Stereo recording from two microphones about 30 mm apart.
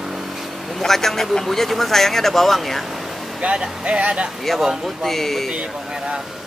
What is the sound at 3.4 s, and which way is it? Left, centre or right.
Speech, right.